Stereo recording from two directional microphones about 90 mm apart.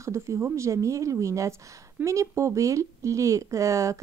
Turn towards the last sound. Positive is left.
turn(degrees=-35)  # may be behind; listen again after turning